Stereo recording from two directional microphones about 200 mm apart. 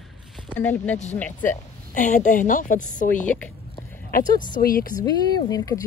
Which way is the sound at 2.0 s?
40° left (ahead or behind).